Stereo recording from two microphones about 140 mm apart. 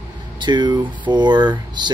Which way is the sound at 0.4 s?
30° right (ahead or behind).